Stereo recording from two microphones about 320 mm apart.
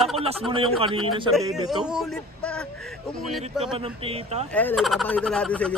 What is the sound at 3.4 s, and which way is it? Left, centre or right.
A man's voice, centre.